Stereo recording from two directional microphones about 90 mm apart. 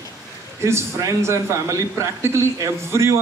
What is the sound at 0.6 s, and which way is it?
A man's voice, 35° right (ahead or behind).